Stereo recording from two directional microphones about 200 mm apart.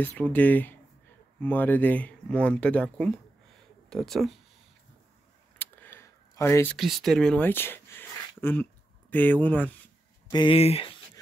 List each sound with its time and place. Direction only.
0.0 s speech: 10° left (ahead or behind)
5.6 s a sound: 10° left (ahead or behind)
6.8 s speech: centre (ahead or behind)
10.3 s speech: 25° left (ahead or behind)